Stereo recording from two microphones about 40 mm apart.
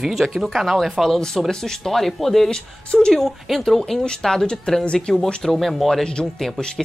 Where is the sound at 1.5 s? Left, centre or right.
Centre.